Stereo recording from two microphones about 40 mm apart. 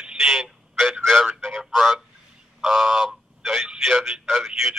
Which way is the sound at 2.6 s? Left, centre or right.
Centre.